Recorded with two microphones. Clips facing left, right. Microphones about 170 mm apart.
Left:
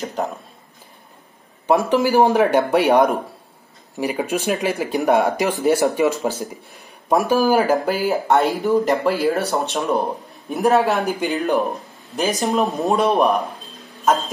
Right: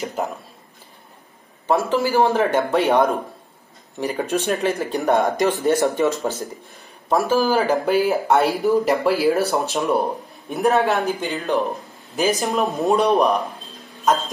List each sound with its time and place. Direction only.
0.1 s a sound: centre (ahead or behind)
1.7 s speech: 20° left (ahead or behind)
7.5 s speech: centre (ahead or behind)
11.2 s speech: 15° left (ahead or behind)
12.2 s speech: centre (ahead or behind)